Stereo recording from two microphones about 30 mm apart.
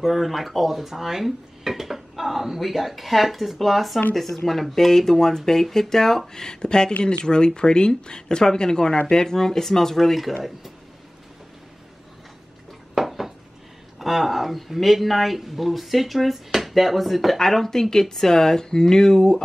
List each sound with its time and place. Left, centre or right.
0.0 s speech: centre
12.9 s a sound: centre
13.9 s speech: centre
17.4 s speech: centre